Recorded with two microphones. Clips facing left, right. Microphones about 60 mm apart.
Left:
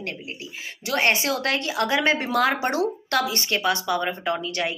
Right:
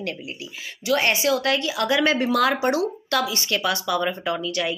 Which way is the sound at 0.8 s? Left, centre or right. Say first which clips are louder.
Right 2 dB; left.